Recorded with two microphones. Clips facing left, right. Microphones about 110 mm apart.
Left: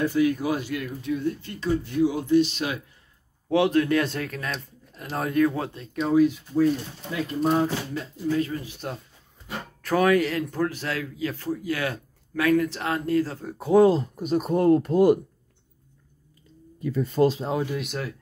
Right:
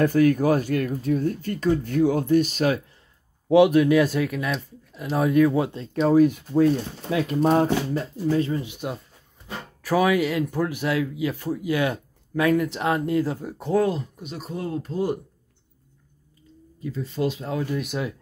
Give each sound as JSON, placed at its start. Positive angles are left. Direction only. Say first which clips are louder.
{"t": 0.0, "sound": "speech", "louder": "right 4 dB", "side_deg": -50}
{"t": 3.4, "sound": "speech", "louder": "right 5 dB", "side_deg": -15}
{"t": 5.7, "sound": "speech", "louder": "right 5 dB", "side_deg": -30}
{"t": 6.1, "sound": "speech", "louder": "right 1 dB", "side_deg": -55}
{"t": 6.6, "sound": "speech", "louder": "right 2 dB", "side_deg": -90}
{"t": 7.9, "sound": "speech", "louder": "right 3 dB", "side_deg": -35}
{"t": 13.7, "sound": "speech", "louder": "left 5 dB", "side_deg": 30}
{"t": 14.1, "sound": "speech", "louder": "left 10 dB", "side_deg": 45}
{"t": 16.8, "sound": "speech", "louder": "left 5 dB", "side_deg": 55}
{"t": 17.5, "sound": "speech", "louder": "left 1 dB", "side_deg": 20}